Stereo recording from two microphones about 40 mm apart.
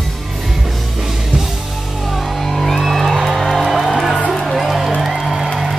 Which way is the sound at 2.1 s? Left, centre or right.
Centre.